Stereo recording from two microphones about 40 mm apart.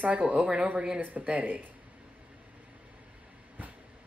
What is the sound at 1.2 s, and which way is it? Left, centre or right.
Speech, right.